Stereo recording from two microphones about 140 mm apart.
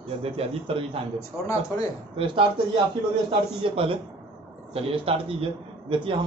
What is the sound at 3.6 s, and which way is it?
A man's voice, 40° right (ahead or behind).